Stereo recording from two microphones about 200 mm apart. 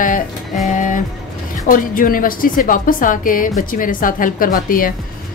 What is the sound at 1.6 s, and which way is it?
A woman's voice, 45° left (ahead or behind).